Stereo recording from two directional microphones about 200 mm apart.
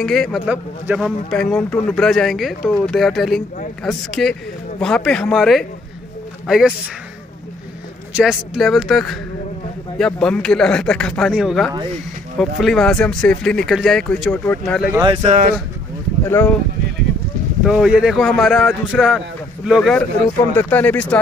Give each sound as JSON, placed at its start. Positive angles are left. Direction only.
{"t": 0.0, "sound": "a man's voice", "side_deg": 0}
{"t": 8.1, "sound": "a man's voice", "side_deg": -5}
{"t": 14.8, "sound": "speech", "side_deg": -10}
{"t": 15.2, "sound": "speech", "side_deg": -35}
{"t": 16.3, "sound": "speech", "side_deg": 10}
{"t": 17.6, "sound": "a man's voice", "side_deg": -5}